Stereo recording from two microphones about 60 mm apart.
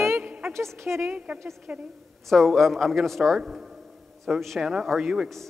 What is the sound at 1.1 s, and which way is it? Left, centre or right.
Speech, right.